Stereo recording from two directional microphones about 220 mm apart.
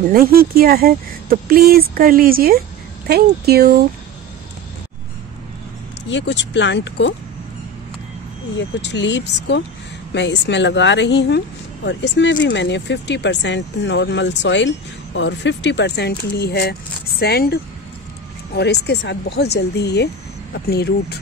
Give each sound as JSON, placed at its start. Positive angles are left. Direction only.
{"t": 0.1, "sound": "speech", "side_deg": -40}
{"t": 6.0, "sound": "speech", "side_deg": 55}
{"t": 8.5, "sound": "speech", "side_deg": 55}